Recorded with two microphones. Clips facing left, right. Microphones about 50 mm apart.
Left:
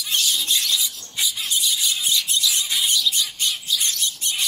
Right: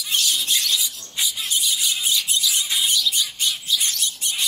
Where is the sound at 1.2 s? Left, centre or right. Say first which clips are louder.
Even; centre.